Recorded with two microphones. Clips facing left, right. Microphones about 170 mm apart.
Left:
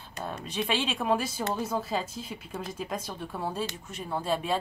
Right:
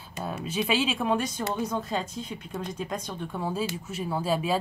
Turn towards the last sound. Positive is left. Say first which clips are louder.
# right 2 dB
turn(degrees=-5)  # may be behind; listen again after turning